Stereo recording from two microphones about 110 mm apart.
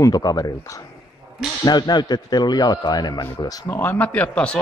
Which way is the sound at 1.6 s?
40° left (ahead or behind).